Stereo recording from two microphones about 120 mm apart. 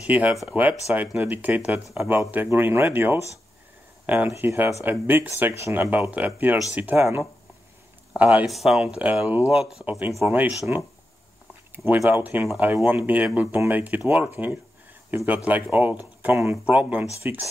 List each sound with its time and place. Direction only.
0.0 s speech: 10° right (ahead or behind)
4.0 s a sound: 15° right (ahead or behind)
4.3 s speech: 20° right (ahead or behind)
8.5 s speech: centre (ahead or behind)
11.7 s speech: 15° right (ahead or behind)